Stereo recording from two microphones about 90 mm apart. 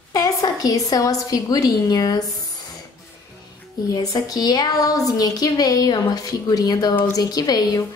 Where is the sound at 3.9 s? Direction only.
45° left (ahead or behind).